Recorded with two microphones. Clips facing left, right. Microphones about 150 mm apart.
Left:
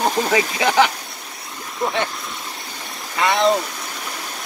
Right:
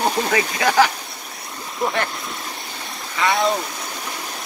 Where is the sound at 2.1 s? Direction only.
Centre (ahead or behind).